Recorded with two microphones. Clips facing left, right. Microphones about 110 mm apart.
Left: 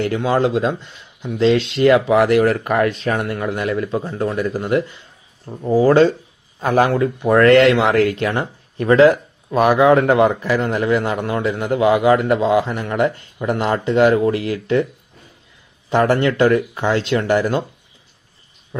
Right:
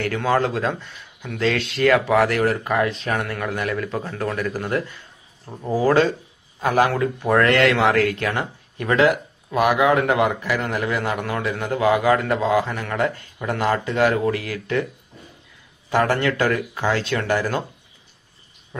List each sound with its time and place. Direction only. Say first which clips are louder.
0.0 s speech: left 3 dB; 20° left (ahead or behind)
2.8 s speech: left 4 dB; 45° left (ahead or behind)
3.1 s speech: left 4 dB; 25° left (ahead or behind)
15.9 s speech: left 4 dB; 25° left (ahead or behind)